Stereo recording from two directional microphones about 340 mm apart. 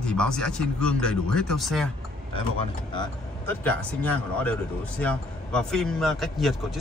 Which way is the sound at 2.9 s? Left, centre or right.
Centre.